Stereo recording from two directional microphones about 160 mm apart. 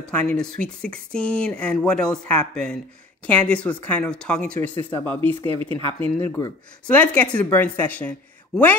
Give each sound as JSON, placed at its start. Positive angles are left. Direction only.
{"t": 0.1, "sound": "speech", "side_deg": 10}
{"t": 5.4, "sound": "speech", "side_deg": -35}
{"t": 6.4, "sound": "speech", "side_deg": 15}